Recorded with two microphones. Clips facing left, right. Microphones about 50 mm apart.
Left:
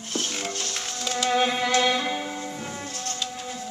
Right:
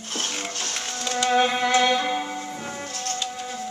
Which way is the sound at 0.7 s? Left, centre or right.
Centre.